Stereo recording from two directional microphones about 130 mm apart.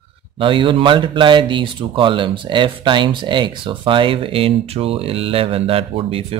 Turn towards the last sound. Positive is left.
turn(degrees=-45)  # may be behind; listen again after turning